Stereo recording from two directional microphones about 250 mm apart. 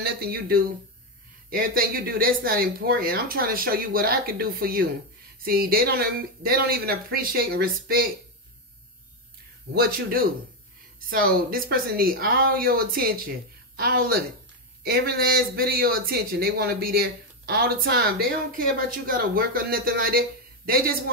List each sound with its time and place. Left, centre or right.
0.0 s speech: right
9.8 s speech: right